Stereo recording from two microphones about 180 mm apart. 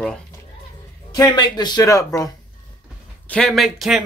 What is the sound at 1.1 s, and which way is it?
A man's voice, 25° left (ahead or behind).